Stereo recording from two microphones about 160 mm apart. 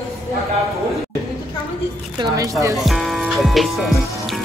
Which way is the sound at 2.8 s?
Centre (ahead or behind).